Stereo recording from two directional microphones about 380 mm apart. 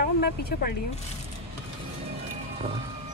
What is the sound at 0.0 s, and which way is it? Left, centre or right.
Speech, left.